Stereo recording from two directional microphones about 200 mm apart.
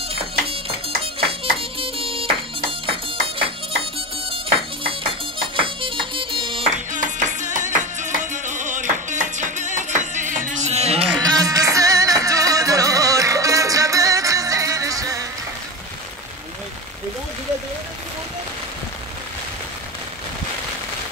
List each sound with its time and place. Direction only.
0.1 s music: 30° right (ahead or behind)
6.9 s music: 40° right (ahead or behind)
11.3 s music: 15° right (ahead or behind)